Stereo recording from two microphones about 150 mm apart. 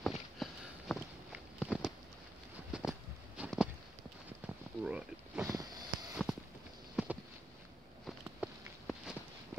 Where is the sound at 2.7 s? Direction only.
5° right (ahead or behind).